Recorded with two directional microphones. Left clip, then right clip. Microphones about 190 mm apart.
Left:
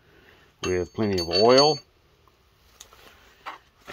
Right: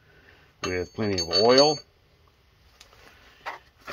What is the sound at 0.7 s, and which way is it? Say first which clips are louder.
Cutlery: left 3 dB; 55° left (ahead or behind).